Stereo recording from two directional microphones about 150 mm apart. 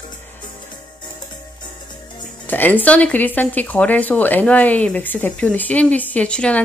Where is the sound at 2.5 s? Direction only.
10° left (ahead or behind).